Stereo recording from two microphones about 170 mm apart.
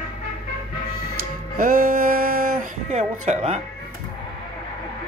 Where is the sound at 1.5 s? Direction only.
55° right (ahead or behind); by 3.6 s 40° right (ahead or behind).